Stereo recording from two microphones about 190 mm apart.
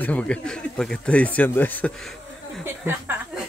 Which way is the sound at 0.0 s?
5° left (ahead or behind).